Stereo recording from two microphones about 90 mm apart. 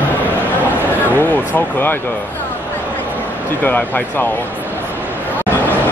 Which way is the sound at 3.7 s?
20° left (ahead or behind).